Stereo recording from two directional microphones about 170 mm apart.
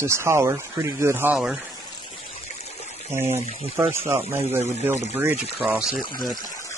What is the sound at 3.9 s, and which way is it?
Speech, 15° right (ahead or behind).